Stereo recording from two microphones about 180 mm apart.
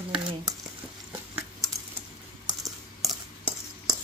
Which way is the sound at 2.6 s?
Centre (ahead or behind).